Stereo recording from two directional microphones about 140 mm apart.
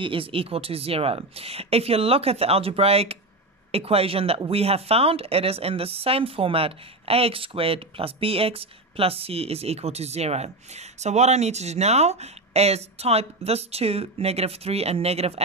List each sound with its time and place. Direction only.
0.0 s speech: 40° right (ahead or behind)